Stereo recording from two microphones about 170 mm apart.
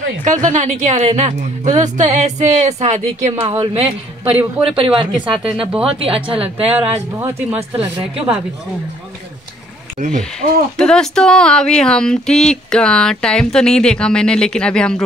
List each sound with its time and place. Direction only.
0.2 s a woman's voice: 45° right (ahead or behind); by 5.5 s 30° right (ahead or behind)
5.6 s speech: 5° right (ahead or behind)
5.9 s speech: 35° right (ahead or behind)
9.9 s a woman's voice: 45° right (ahead or behind)
10.8 s speech: 5° left (ahead or behind)